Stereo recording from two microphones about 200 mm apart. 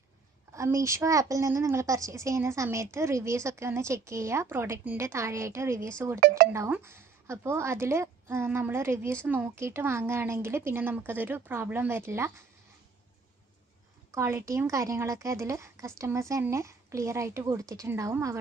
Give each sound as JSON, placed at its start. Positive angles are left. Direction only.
{"t": 0.5, "sound": "a woman's voice", "side_deg": -15}
{"t": 6.1, "sound": "speech", "side_deg": -45}
{"t": 6.5, "sound": "a woman's voice", "side_deg": -15}
{"t": 14.1, "sound": "a woman's voice", "side_deg": -15}